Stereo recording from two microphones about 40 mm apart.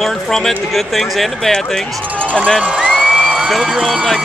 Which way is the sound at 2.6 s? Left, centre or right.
Right.